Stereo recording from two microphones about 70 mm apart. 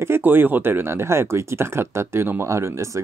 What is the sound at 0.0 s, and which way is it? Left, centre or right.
Speech, right.